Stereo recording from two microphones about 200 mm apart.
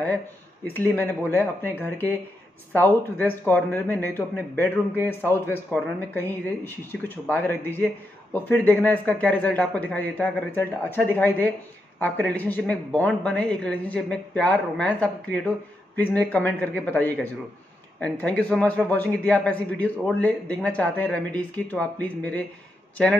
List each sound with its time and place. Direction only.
0.7 s a man's voice: 10° left (ahead or behind)